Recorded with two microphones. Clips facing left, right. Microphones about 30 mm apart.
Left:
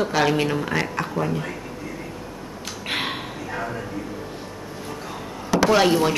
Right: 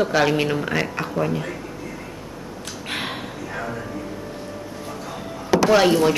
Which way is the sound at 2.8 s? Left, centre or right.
Centre.